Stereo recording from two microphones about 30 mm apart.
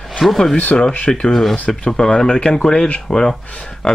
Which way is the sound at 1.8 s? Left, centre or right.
Left.